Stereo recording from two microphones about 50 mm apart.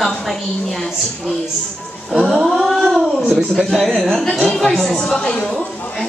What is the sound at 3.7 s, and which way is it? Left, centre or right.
Speech, centre.